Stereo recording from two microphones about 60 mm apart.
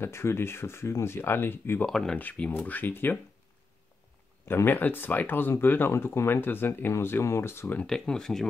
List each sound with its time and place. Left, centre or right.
0.0 s speech: left
1.9 s speech: centre
2.1 s speech: left
4.6 s speech: left
7.8 s speech: centre